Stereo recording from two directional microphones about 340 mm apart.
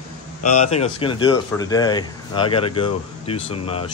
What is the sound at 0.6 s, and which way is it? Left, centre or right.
Speech, centre.